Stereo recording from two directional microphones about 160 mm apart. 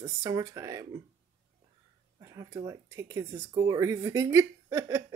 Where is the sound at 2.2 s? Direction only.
20° right (ahead or behind).